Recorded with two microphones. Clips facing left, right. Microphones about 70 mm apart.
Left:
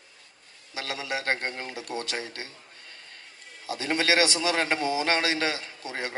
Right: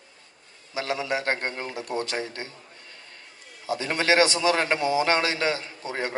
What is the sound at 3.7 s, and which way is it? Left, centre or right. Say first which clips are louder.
Speech: right 2 dB; right.